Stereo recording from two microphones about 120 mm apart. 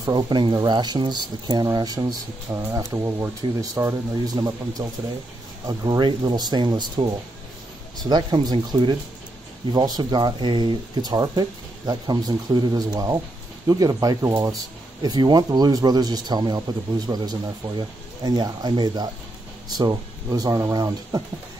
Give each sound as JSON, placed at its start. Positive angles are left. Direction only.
{"t": 0.0, "sound": "a man's voice", "side_deg": -35}